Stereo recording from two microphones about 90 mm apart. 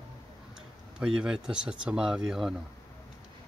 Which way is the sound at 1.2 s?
10° right (ahead or behind).